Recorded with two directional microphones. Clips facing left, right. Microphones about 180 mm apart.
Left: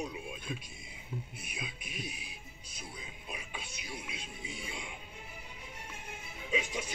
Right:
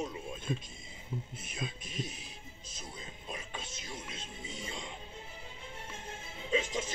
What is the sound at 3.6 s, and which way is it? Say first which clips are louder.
Music: even; 25° right (ahead or behind).